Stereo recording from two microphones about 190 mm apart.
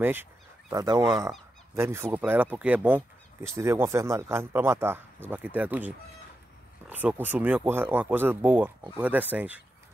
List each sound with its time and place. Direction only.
0.0 s speech: 10° right (ahead or behind)